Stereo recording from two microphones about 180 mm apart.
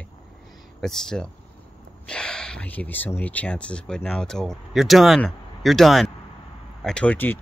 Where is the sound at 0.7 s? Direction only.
5° left (ahead or behind).